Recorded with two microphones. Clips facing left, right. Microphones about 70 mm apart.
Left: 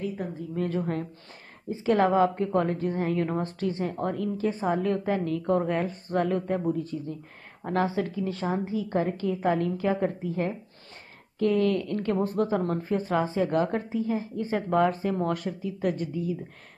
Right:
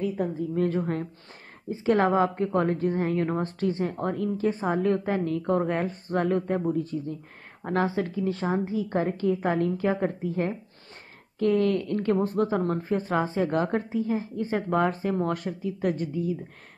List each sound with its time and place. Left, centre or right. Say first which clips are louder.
0.7 s a woman's voice: right 1 dB; right
7.6 s a woman's voice: even; right